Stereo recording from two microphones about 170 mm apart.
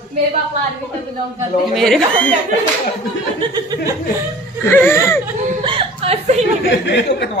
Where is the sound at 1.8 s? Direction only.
5° left (ahead or behind).